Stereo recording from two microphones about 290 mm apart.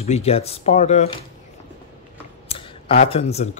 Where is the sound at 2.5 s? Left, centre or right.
Centre.